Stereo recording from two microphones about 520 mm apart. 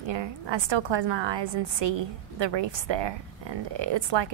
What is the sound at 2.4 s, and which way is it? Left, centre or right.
A woman's voice, right.